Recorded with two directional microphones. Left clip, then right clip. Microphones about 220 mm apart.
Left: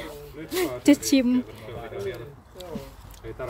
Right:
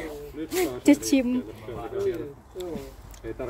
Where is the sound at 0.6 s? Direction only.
15° left (ahead or behind).